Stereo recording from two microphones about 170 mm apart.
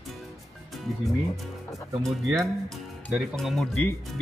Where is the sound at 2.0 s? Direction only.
Centre (ahead or behind).